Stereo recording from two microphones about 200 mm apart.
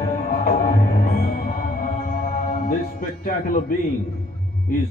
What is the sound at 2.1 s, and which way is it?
Music, 40° left (ahead or behind).